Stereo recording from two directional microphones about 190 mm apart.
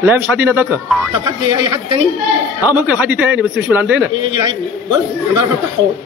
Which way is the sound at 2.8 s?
10° right (ahead or behind).